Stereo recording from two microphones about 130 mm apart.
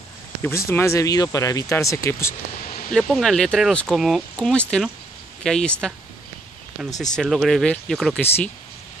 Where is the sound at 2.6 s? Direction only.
90° left.